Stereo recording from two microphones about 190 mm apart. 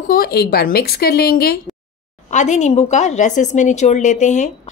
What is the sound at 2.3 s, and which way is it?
Speech, 40° left (ahead or behind).